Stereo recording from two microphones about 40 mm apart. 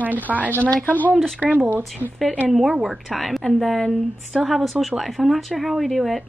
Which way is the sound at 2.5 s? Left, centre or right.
Centre.